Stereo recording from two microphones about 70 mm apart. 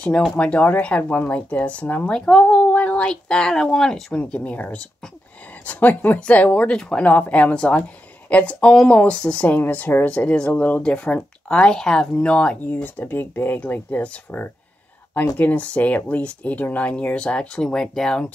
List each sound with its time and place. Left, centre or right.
0.0 s speech: centre
2.1 s speech: centre
2.7 s speech: left
4.1 s speech: centre
7.1 s speech: left
12.8 s speech: left; by 18.3 s centre